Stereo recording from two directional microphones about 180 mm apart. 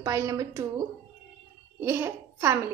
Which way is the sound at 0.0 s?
20° right (ahead or behind).